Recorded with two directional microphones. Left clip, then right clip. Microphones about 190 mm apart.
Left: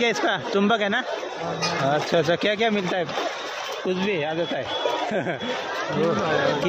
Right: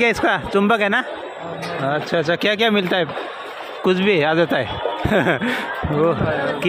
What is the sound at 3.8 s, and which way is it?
A man's voice, 40° right (ahead or behind).